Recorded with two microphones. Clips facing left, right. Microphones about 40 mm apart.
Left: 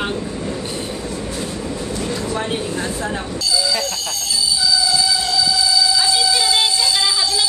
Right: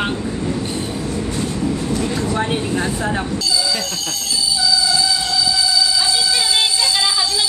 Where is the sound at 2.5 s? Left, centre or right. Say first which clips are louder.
Right 2 dB; centre.